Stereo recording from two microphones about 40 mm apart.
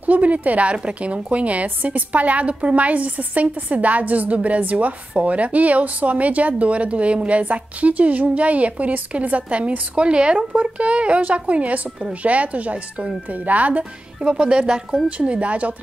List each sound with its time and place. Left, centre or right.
0.0 s speech: right
10.5 s speech: right
14.4 s speech: right
15.0 s speech: right